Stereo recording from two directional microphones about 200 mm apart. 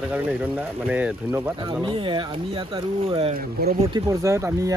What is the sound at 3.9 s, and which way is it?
Speech, 15° right (ahead or behind).